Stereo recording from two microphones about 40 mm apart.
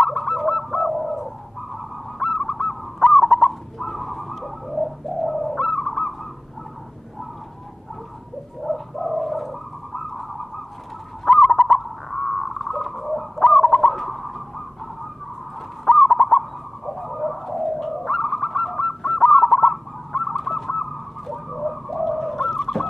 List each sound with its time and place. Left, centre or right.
0.0 s bird: centre
1.7 s goose: centre
8.6 s bird: centre
11.2 s bird: centre
15.8 s bird: centre